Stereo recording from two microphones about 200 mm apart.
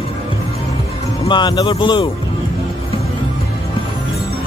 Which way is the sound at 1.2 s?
20° left (ahead or behind).